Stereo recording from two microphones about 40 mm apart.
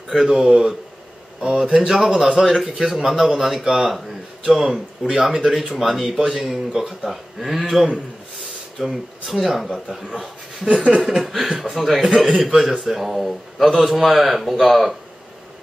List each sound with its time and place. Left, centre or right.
0.3 s speech: centre
2.4 s speech: centre
10.7 s speech: right
11.0 s speech: centre